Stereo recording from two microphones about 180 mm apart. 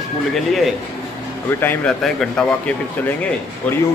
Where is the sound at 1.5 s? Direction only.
10° left (ahead or behind).